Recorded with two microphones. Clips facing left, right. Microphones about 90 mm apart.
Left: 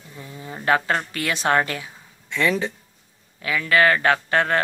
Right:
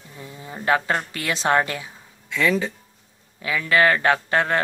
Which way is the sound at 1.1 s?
15° right (ahead or behind).